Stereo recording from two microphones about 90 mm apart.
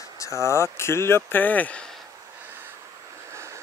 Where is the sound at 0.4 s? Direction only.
30° left (ahead or behind).